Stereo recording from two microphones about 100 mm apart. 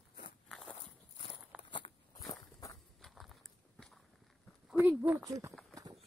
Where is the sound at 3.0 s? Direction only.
Centre (ahead or behind).